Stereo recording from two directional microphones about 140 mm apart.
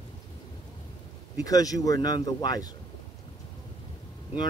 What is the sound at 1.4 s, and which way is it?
Speech, 25° left (ahead or behind).